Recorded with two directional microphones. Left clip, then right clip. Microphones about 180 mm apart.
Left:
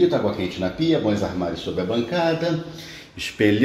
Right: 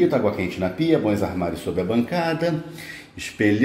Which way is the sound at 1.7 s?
30° right (ahead or behind).